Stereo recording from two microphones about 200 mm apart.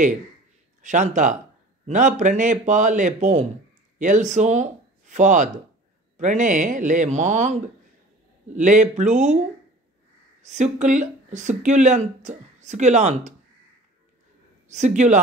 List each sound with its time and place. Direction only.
0.8 s speech: 40° right (ahead or behind)
8.5 s speech: 40° right (ahead or behind)
10.4 s speech: 35° right (ahead or behind)
14.7 s speech: 35° right (ahead or behind)